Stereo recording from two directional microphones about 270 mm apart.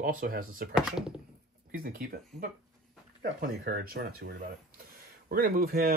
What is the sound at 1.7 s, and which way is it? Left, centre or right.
Speech, right.